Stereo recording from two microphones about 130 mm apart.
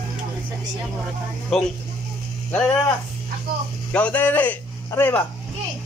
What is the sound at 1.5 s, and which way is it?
Speech, centre (ahead or behind).